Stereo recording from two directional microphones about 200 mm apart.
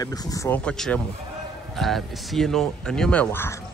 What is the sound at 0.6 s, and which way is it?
Speech, 5° left (ahead or behind).